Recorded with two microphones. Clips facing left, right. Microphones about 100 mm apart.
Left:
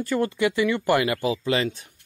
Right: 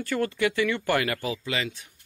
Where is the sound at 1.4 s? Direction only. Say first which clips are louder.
Left 7 dB; 35° left (ahead or behind).